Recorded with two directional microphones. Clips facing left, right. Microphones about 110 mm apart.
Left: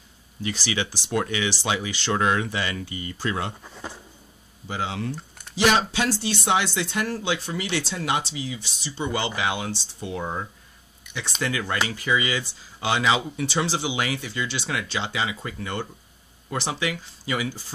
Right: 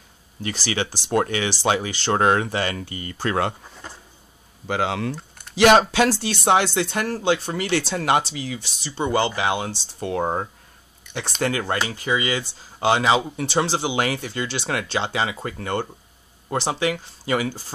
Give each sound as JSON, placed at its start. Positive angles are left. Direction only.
{"t": 0.4, "sound": "speech", "side_deg": -45}
{"t": 4.6, "sound": "speech", "side_deg": -75}
{"t": 5.6, "sound": "speech", "side_deg": -65}
{"t": 6.4, "sound": "speech", "side_deg": -40}
{"t": 9.9, "sound": "speech", "side_deg": -55}
{"t": 10.2, "sound": "speech", "side_deg": -45}